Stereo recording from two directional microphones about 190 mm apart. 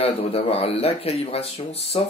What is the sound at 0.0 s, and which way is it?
Speech, 30° left (ahead or behind).